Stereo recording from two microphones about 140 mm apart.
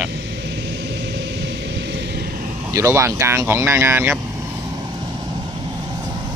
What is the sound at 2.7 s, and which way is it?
Speech, 20° right (ahead or behind).